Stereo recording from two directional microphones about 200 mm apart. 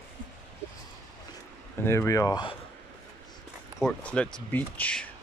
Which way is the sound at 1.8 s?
10° left (ahead or behind).